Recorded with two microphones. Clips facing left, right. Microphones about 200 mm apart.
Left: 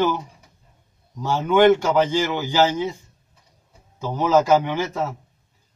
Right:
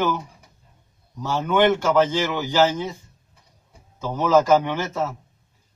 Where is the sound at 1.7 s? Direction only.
15° left (ahead or behind).